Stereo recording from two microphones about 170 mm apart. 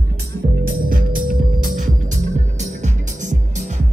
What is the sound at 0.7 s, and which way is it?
Music, 55° right (ahead or behind).